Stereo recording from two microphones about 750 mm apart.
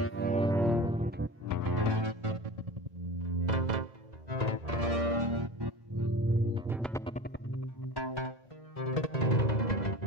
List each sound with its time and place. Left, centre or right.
0.0 s music: centre; by 2.5 s right
3.2 s music: right
6.5 s music: centre
7.9 s music: left
8.7 s music: left